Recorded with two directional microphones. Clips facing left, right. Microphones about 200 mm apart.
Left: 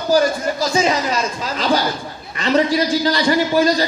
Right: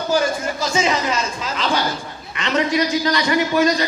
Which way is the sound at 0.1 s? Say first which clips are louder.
Left 5 dB; 35° left (ahead or behind).